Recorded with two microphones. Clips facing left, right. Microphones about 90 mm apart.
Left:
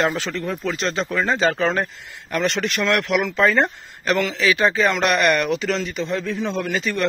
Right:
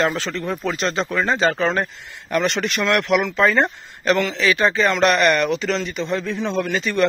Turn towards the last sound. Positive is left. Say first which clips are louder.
# right 3 dB
turn(degrees=0)  # may be behind; listen again after turning